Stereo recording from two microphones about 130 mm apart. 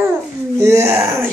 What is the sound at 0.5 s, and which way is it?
Speech, 20° right (ahead or behind).